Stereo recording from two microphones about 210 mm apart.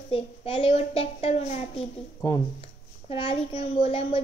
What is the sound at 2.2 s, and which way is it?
Speech, 15° left (ahead or behind).